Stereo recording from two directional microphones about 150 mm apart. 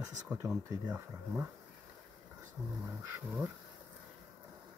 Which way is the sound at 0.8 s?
10° right (ahead or behind).